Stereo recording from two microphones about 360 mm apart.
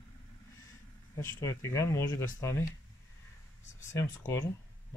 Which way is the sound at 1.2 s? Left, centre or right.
Centre.